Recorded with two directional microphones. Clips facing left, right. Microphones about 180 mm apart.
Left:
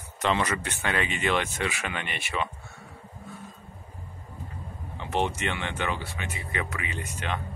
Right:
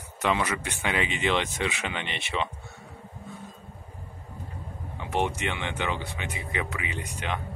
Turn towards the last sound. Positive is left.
turn(degrees=-15)  # may be behind; listen again after turning